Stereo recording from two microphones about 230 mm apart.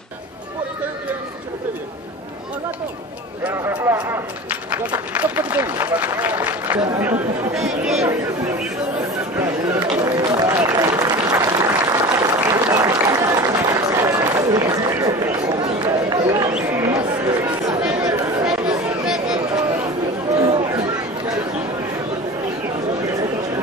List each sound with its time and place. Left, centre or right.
3.4 s a man's voice: centre
9.4 s applause: centre
16.5 s a sound: centre
17.0 s chatter: right
17.8 s chatter: centre
19.0 s a sound: centre
20.3 s chatter: right